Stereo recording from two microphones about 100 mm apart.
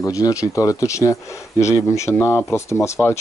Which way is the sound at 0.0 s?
35° left (ahead or behind).